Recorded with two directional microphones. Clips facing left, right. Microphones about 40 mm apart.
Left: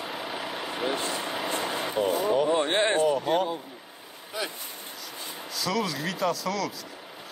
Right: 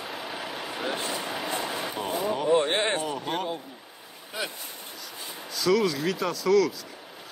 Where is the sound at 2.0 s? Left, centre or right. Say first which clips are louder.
Left 6 dB; centre.